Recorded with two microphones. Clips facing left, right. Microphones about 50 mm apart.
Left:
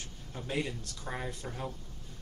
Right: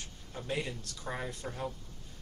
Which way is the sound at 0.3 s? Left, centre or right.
Centre.